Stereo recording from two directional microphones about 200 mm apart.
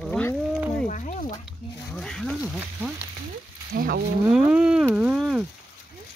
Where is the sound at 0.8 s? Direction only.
40° left (ahead or behind).